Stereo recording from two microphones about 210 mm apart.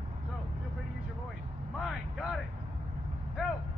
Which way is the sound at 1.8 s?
5° right (ahead or behind).